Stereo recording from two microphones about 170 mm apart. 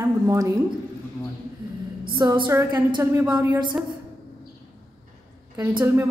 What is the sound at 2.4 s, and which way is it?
A woman's voice, 15° right (ahead or behind).